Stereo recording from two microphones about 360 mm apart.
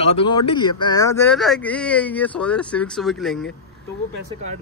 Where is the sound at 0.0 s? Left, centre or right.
Centre.